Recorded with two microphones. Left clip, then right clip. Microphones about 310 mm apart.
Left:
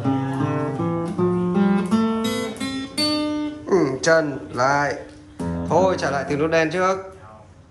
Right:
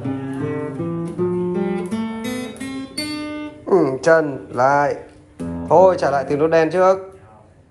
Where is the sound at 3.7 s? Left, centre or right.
Centre.